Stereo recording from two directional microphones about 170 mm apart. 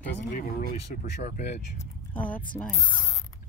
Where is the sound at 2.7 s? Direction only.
25° left (ahead or behind).